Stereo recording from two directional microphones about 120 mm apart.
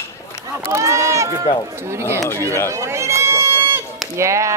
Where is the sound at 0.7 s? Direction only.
25° right (ahead or behind).